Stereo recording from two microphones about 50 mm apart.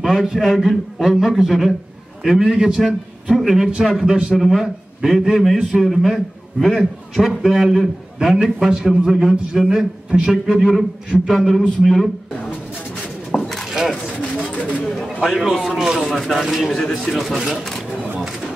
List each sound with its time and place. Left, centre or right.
0.0 s a man's voice: centre
0.5 s a man's voice: centre
5.5 s a man's voice: centre
13.3 s a sound: centre
13.8 s a sound: centre
14.5 s a sound: left
15.1 s a man's voice: centre
16.1 s a man's voice: centre
16.4 s a man's voice: centre